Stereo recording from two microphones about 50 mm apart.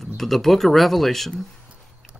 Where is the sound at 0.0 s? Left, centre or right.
Centre.